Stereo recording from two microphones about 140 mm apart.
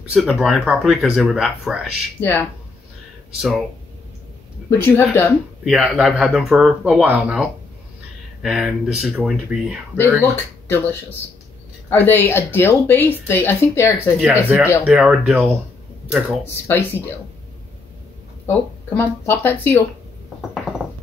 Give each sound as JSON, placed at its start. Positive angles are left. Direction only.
{"t": 0.1, "sound": "speech", "side_deg": 0}
{"t": 2.1, "sound": "speech", "side_deg": 15}
{"t": 3.3, "sound": "speech", "side_deg": 0}
{"t": 4.6, "sound": "speech", "side_deg": 15}
{"t": 5.7, "sound": "speech", "side_deg": -5}
{"t": 10.3, "sound": "speech", "side_deg": 15}
{"t": 14.2, "sound": "speech", "side_deg": -10}
{"t": 16.6, "sound": "speech", "side_deg": 15}
{"t": 18.5, "sound": "speech", "side_deg": 15}